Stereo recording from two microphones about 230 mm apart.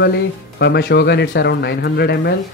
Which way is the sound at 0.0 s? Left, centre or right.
Left.